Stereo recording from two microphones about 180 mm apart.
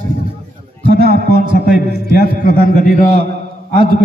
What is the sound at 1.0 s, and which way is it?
Music, 60° right (ahead or behind).